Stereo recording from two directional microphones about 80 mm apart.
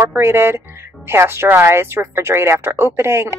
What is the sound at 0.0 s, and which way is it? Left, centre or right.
Speech, right.